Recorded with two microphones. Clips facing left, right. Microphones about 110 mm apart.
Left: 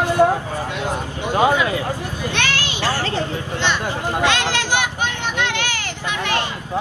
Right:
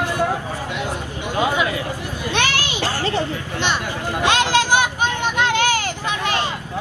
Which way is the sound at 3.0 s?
20° right (ahead or behind).